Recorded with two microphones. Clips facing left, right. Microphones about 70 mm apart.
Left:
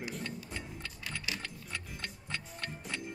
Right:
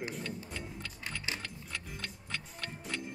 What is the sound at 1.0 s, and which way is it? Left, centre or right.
Music, right.